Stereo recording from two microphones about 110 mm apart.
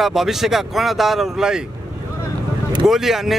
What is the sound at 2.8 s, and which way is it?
Speech, 5° right (ahead or behind).